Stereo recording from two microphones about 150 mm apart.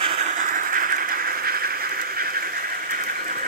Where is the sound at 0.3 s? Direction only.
65° right (ahead or behind).